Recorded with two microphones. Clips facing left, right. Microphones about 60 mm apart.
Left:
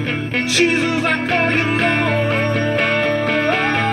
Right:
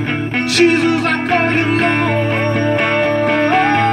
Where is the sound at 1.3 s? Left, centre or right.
Centre.